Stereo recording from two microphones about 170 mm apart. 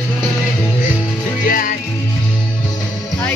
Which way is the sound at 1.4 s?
55° left (ahead or behind).